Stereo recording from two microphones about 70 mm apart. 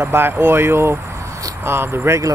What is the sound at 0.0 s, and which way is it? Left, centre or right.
Speech, right.